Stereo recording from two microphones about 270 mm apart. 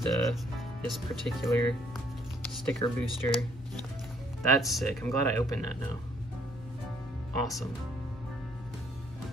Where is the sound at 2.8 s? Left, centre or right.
Centre.